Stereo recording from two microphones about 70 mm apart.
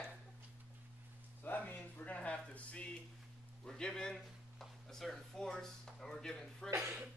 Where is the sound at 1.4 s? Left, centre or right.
Left; by 6.7 s centre.